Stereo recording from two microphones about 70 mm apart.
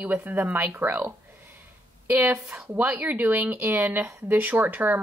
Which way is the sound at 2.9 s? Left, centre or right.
Right.